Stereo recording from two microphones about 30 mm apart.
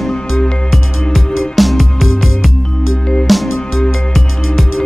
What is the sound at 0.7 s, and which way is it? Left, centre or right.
Music, centre.